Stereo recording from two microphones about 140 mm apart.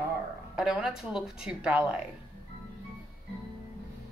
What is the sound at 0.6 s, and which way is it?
A woman's voice, 5° right (ahead or behind).